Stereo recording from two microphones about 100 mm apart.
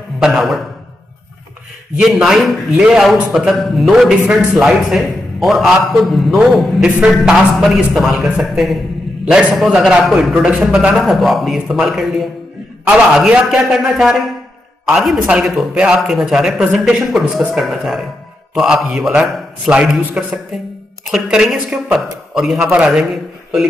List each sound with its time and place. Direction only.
0.2 s a man's voice: 5° right (ahead or behind)
2.0 s a man's voice: 5° right (ahead or behind)